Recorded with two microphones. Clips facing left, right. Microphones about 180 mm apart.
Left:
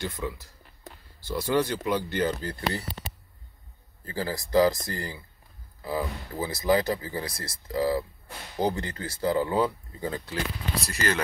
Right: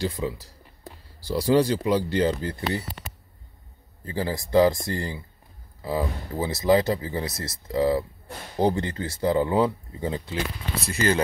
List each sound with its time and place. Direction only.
0.2 s speech: 20° right (ahead or behind)
1.2 s speech: 35° right (ahead or behind)
4.0 s speech: 20° right (ahead or behind)